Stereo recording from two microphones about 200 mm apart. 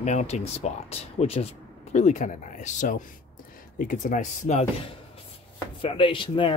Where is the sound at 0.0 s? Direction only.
35° left (ahead or behind).